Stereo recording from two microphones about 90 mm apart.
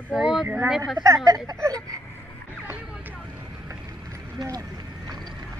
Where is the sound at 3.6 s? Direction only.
35° right (ahead or behind).